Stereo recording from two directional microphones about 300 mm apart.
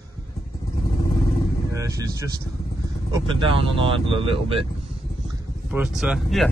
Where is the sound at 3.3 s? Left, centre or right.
Centre.